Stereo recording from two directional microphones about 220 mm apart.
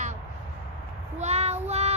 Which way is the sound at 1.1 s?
30° right (ahead or behind).